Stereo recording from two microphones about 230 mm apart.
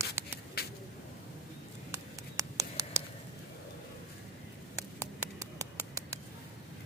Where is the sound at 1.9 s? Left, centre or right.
Centre.